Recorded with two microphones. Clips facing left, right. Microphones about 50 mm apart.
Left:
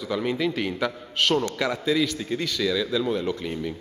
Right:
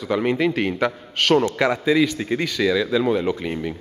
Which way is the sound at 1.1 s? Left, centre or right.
Right.